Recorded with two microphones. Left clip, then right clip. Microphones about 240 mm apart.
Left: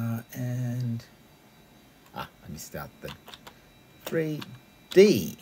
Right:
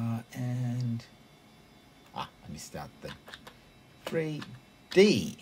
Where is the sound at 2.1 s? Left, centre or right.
Left.